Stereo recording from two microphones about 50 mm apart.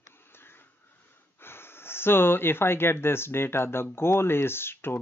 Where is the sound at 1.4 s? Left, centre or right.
Left.